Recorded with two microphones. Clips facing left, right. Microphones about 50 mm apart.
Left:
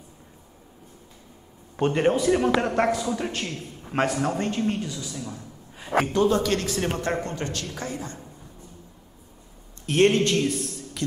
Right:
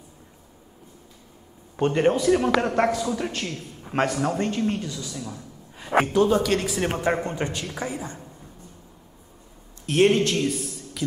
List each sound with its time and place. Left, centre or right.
1.8 s a man's voice: centre
7.0 s a man's voice: centre
9.8 s a man's voice: centre